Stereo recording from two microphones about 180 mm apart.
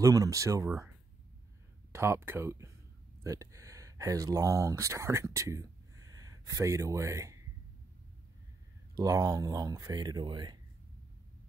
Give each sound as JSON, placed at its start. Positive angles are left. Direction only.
{"t": 0.0, "sound": "speech", "side_deg": -20}
{"t": 8.9, "sound": "speech", "side_deg": -20}